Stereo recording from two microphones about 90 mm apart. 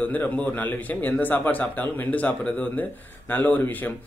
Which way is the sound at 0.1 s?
15° left (ahead or behind).